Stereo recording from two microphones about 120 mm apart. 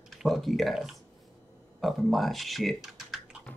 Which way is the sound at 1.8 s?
Centre (ahead or behind).